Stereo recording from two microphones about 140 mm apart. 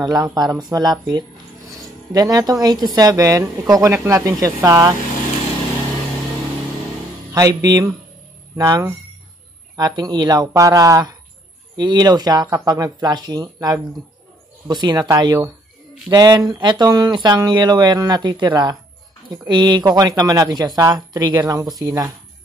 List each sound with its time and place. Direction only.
0.0 s speech: 25° right (ahead or behind)
7.3 s speech: 25° right (ahead or behind)